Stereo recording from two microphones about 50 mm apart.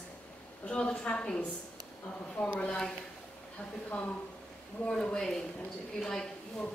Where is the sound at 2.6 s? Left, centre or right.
Centre.